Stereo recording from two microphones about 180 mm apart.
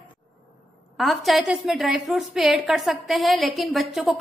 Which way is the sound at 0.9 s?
Centre (ahead or behind).